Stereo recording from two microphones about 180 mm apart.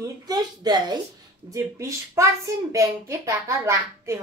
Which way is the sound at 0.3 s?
25° right (ahead or behind).